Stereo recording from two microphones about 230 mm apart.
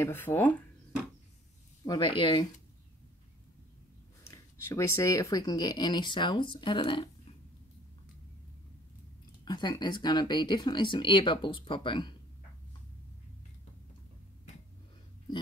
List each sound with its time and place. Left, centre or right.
0.0 s speech: centre
1.9 s speech: centre
4.3 s speech: centre
9.4 s speech: centre